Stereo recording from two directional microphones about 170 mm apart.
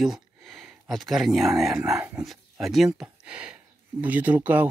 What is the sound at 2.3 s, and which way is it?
Speech, centre (ahead or behind).